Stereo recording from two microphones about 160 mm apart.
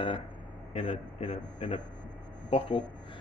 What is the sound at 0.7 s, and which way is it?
Speech, 45° left (ahead or behind).